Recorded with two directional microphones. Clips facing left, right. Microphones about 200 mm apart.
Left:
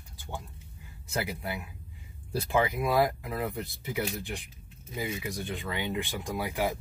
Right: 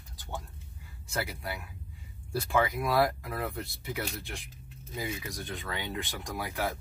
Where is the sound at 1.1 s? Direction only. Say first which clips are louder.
Left 2 dB; 15° left (ahead or behind).